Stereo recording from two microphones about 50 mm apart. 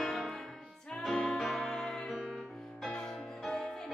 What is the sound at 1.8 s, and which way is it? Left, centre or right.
Music, centre.